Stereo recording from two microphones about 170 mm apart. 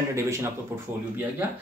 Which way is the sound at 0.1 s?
15° right (ahead or behind).